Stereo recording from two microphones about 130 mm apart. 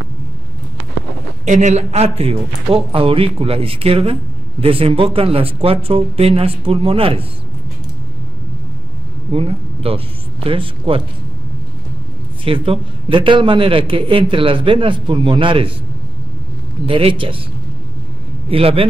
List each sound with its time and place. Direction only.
1.4 s speech: 65° right (ahead or behind); by 7.2 s 45° right (ahead or behind)
9.3 s speech: 45° right (ahead or behind)
12.4 s a man's voice: 45° right (ahead or behind)
16.8 s speech: 45° right (ahead or behind)
18.5 s speech: 45° right (ahead or behind)